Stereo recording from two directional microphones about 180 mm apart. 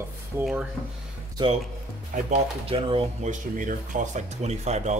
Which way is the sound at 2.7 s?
30° right (ahead or behind).